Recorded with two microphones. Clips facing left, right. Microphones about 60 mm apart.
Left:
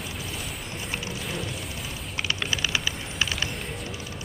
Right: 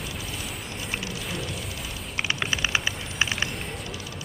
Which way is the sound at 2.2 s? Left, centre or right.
Centre.